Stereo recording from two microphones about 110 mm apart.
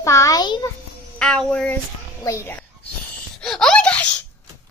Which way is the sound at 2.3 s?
25° left (ahead or behind).